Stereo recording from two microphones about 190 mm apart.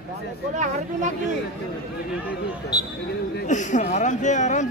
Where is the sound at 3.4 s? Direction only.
40° left (ahead or behind).